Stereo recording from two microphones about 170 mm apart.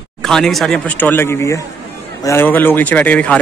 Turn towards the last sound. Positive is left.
turn(degrees=10)  # may be behind; listen again after turning